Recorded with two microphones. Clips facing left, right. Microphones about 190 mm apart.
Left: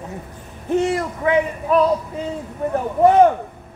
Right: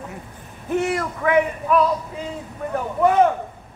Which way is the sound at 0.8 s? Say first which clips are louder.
Left 2 dB; 25° left (ahead or behind).